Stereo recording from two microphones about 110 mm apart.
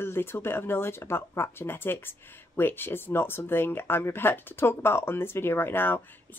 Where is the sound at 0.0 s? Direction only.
20° left (ahead or behind).